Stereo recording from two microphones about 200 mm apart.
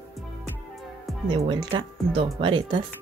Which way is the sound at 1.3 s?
25° right (ahead or behind).